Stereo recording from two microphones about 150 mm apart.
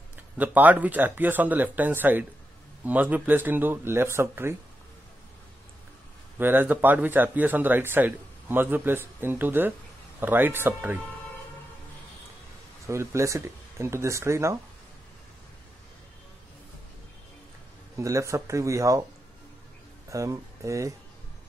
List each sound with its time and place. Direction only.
0.4 s speech: 10° right (ahead or behind)
6.3 s speech: 15° right (ahead or behind)
12.8 s speech: 20° right (ahead or behind)
17.9 s speech: 20° right (ahead or behind)
20.1 s speech: 20° right (ahead or behind)